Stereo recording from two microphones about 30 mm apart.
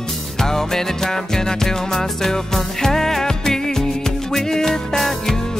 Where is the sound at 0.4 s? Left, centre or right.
Centre.